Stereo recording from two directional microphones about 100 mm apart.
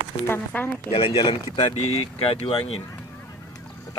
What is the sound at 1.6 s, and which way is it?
Speech, 75° left (ahead or behind).